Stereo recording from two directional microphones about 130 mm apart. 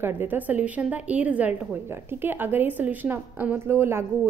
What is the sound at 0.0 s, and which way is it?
A woman's voice, 15° right (ahead or behind).